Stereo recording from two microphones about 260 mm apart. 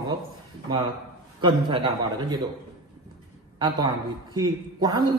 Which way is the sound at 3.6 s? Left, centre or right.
Centre.